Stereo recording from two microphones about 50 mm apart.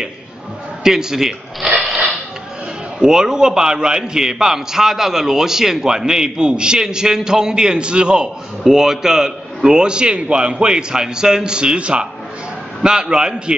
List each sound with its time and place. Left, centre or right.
0.8 s speech: centre
3.0 s a man's voice: centre
8.6 s a man's voice: centre